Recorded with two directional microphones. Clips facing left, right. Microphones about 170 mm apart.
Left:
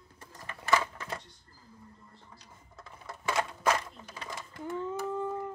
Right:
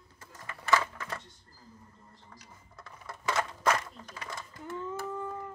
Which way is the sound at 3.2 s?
10° left (ahead or behind).